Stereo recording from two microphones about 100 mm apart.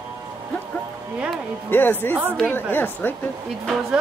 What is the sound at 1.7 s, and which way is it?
A woman's voice, 20° left (ahead or behind).